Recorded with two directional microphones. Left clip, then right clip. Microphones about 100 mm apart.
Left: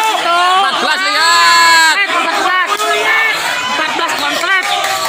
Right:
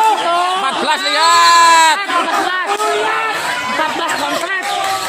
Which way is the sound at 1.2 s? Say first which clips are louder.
Even; 20° right (ahead or behind).